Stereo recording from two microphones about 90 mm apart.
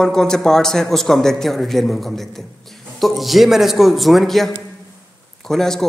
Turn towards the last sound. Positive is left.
turn(degrees=5)  # may be behind; listen again after turning